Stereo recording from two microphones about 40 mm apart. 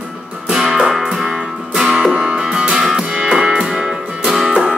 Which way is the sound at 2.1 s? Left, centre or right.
Right.